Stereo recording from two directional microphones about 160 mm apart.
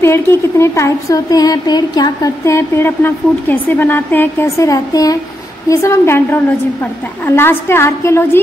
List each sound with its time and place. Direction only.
0.0 s speech: 15° left (ahead or behind)